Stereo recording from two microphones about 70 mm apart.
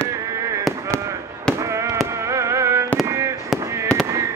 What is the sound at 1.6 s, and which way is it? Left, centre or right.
Fireworks, right.